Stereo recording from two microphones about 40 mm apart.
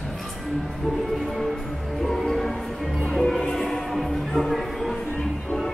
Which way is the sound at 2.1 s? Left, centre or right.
Centre.